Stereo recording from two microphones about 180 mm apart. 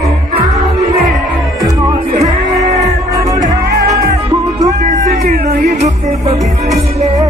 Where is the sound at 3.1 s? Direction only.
20° right (ahead or behind).